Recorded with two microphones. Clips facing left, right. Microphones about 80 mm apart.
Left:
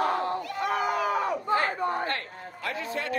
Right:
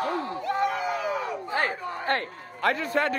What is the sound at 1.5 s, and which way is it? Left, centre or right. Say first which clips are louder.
Chatter: left 2 dB; right.